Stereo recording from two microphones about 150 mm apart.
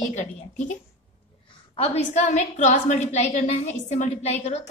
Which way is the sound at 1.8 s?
45° left (ahead or behind).